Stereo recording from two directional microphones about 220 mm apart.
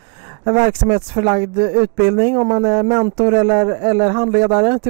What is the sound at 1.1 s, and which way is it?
Speech, 25° right (ahead or behind).